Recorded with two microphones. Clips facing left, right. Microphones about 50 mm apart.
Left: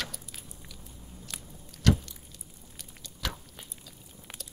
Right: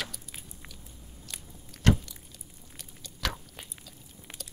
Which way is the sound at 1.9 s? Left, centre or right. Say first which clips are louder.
Right 1 dB; right.